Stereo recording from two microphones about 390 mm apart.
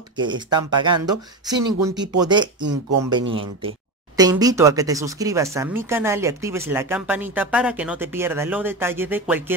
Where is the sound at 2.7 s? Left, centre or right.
Right.